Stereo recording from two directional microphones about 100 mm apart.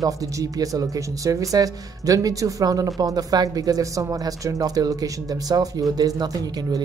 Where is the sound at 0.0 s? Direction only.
35° right (ahead or behind).